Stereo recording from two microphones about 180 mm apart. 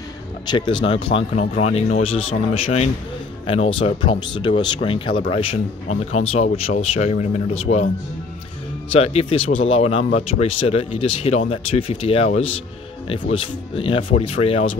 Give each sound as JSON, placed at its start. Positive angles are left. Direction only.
{"t": 0.5, "sound": "speech", "side_deg": 25}
{"t": 8.9, "sound": "speech", "side_deg": 35}